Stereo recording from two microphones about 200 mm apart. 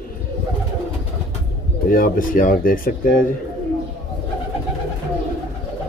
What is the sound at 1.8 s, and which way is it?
Speech, 45° left (ahead or behind).